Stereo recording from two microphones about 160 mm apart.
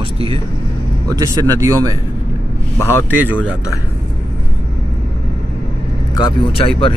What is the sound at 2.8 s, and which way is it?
Speech, 15° left (ahead or behind).